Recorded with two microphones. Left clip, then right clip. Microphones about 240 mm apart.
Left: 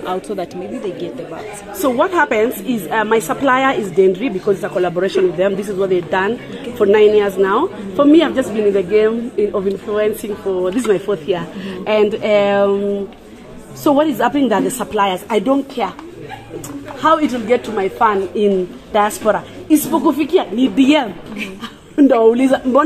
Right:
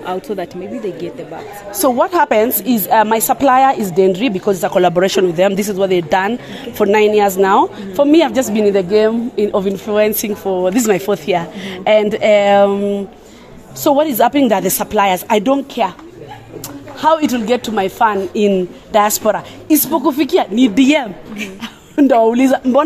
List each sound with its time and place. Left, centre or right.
0.0 s speech: right
1.8 s a woman's voice: right
13.8 s a woman's voice: right
17.0 s a woman's voice: right